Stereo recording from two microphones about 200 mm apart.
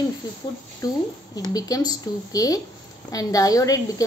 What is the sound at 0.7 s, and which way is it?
A woman's voice, 20° left (ahead or behind).